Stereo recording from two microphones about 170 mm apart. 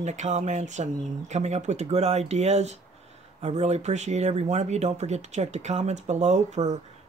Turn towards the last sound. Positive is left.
turn(degrees=-45)  # may be behind; listen again after turning